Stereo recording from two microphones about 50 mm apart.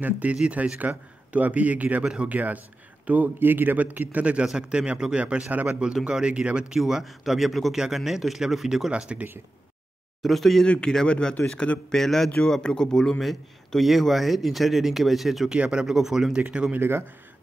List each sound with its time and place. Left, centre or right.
0.0 s a man's voice: right
3.3 s a man's voice: right
5.5 s a man's voice: right
6.0 s a man's voice: centre
6.8 s a man's voice: centre
8.9 s a man's voice: right
10.2 s a man's voice: centre
10.6 s a man's voice: centre
11.9 s speech: centre
13.2 s a man's voice: centre
15.5 s a man's voice: centre
15.9 s speech: centre
16.3 s a man's voice: right